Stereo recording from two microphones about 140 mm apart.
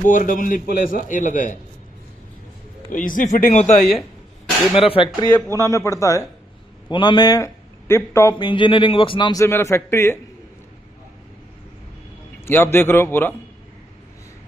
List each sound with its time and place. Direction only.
0.0 s a man's voice: 70° left (ahead or behind)
2.9 s a man's voice: 70° left (ahead or behind)
4.7 s speech: 40° left (ahead or behind)
5.6 s a man's voice: 20° left (ahead or behind)
6.9 s a man's voice: 35° left (ahead or behind)
8.4 s speech: 35° left (ahead or behind)
9.4 s a man's voice: 20° left (ahead or behind)
12.4 s a man's voice: 15° left (ahead or behind)